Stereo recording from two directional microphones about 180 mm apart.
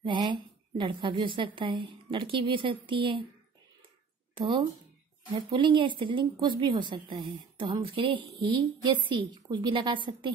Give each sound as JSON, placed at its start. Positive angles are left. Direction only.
{"t": 0.0, "sound": "a woman's voice", "side_deg": -25}
{"t": 4.4, "sound": "a woman's voice", "side_deg": -25}